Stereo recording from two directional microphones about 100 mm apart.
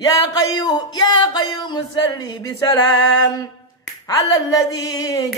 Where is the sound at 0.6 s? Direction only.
45° left (ahead or behind).